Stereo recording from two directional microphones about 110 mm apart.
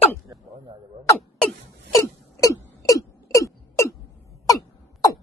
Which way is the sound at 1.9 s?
30° left (ahead or behind).